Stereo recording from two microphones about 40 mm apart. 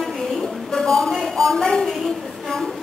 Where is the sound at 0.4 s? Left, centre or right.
Centre.